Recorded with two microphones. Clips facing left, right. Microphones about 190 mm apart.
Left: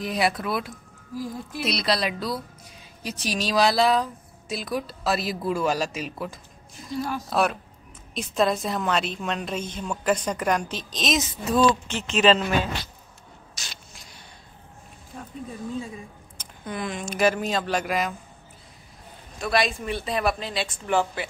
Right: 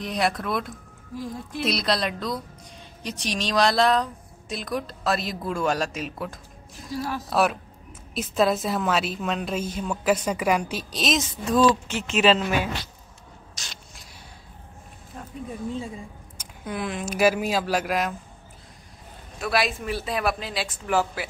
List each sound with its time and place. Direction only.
0.0 s speech: 5° left (ahead or behind)
13.6 s spray: 5° left (ahead or behind)
15.1 s a sound: centre (ahead or behind)
16.3 s speech: 5° right (ahead or behind)
19.3 s speech: 5° right (ahead or behind)